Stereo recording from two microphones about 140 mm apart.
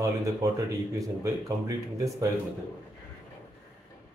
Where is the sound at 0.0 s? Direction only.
20° right (ahead or behind).